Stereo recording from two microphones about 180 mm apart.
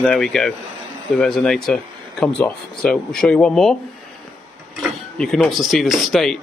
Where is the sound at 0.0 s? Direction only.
5° left (ahead or behind).